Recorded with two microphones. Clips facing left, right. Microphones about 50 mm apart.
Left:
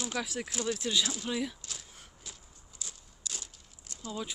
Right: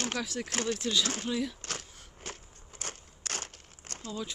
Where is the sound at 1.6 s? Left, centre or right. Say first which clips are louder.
Right 7 dB; right.